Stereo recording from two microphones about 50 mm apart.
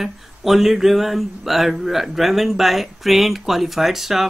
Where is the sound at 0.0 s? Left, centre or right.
Centre.